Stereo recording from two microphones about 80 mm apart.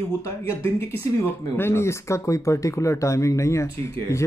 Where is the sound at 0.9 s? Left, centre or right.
Left.